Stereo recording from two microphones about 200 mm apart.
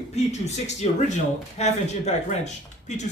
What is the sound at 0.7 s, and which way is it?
Speech, 35° left (ahead or behind).